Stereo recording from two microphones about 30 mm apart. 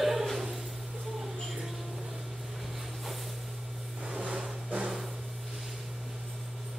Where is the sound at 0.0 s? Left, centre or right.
Centre.